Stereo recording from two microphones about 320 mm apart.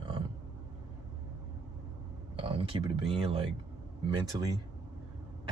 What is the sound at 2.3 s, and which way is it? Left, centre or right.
Speech, centre.